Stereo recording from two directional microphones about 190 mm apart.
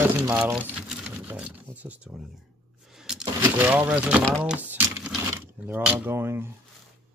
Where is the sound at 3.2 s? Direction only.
15° right (ahead or behind).